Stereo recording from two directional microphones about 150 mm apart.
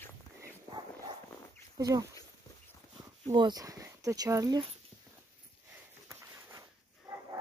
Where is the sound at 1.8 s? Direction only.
25° right (ahead or behind).